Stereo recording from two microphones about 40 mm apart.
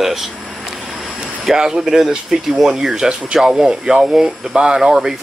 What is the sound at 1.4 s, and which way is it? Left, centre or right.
Speech, centre.